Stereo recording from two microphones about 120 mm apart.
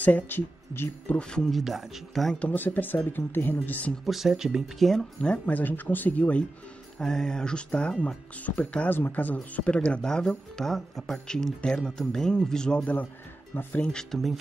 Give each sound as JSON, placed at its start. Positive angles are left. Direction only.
{"t": 0.0, "sound": "speech", "side_deg": 15}
{"t": 4.0, "sound": "speech", "side_deg": 0}
{"t": 13.9, "sound": "speech", "side_deg": 0}